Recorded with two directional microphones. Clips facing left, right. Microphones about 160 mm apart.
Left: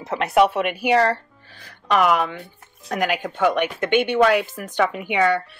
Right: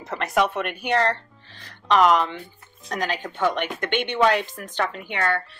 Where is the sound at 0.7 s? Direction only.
10° left (ahead or behind).